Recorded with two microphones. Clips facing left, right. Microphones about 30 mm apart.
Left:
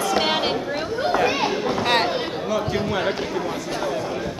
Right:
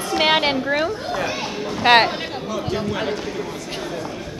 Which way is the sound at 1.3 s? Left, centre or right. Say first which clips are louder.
Left 4 dB; left.